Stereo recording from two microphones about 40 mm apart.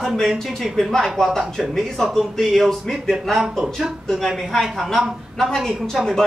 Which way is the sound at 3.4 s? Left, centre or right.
Centre.